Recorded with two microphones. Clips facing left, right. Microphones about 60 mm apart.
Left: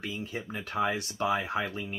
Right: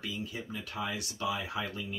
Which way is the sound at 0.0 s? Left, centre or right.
Left.